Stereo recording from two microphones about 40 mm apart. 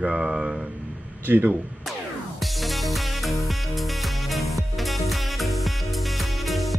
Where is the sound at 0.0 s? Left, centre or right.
Right.